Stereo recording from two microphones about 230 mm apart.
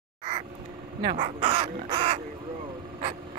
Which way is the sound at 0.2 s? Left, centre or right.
Centre.